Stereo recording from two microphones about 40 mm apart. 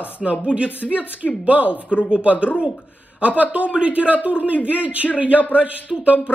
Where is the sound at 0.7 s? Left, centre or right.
Left.